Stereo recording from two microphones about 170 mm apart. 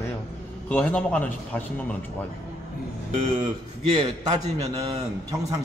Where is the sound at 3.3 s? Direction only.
30° right (ahead or behind).